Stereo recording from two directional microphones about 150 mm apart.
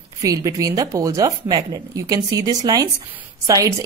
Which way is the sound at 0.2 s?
20° right (ahead or behind).